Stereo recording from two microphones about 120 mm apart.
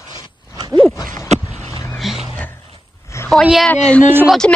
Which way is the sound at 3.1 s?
25° left (ahead or behind).